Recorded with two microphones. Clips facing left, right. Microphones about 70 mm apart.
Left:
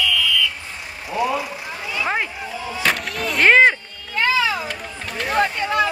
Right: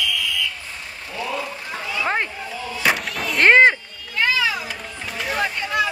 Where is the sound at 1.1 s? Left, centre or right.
Centre.